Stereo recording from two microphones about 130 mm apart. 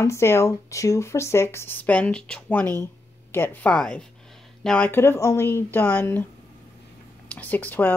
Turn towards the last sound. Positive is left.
turn(degrees=15)  # may be behind; listen again after turning